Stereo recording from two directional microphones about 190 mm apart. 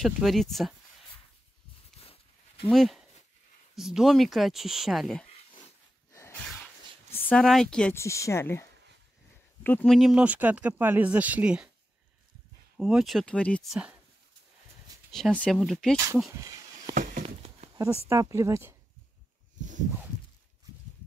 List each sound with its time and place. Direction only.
0.0 s speech: centre (ahead or behind)
2.0 s a sound: 30° left (ahead or behind)
2.7 s speech: centre (ahead or behind)
5.3 s a sound: 30° left (ahead or behind)
7.1 s speech: 10° left (ahead or behind); by 11.7 s 5° right (ahead or behind)
12.7 s speech: centre (ahead or behind)
15.0 s speech: centre (ahead or behind)
16.9 s a sound: 45° right (ahead or behind)
18.0 s speech: 15° right (ahead or behind)